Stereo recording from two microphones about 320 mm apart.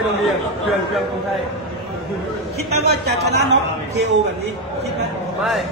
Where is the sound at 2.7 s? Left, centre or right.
Right.